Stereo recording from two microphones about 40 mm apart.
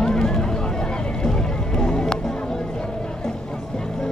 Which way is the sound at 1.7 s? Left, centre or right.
Left.